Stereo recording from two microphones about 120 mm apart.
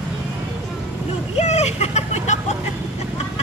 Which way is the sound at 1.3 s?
70° left (ahead or behind).